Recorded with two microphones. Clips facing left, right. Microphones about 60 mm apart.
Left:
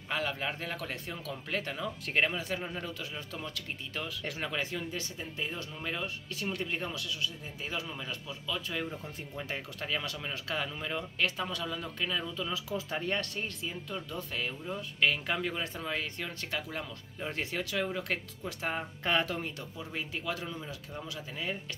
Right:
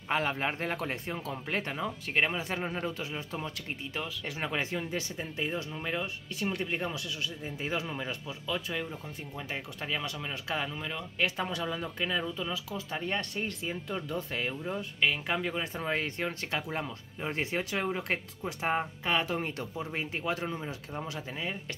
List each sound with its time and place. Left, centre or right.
0.1 s speech: right
4.0 s speech: centre
4.4 s speech: right
9.5 s speech: centre
11.1 s speech: right
12.6 s speech: centre
13.0 s speech: centre
13.7 s speech: right
15.0 s speech: centre
15.7 s speech: right
19.0 s speech: centre
19.3 s speech: right